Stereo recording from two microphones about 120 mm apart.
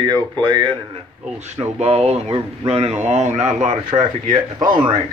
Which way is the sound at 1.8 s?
60° right (ahead or behind).